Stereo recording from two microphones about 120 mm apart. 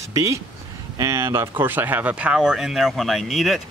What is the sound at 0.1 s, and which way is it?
Speech, 25° right (ahead or behind).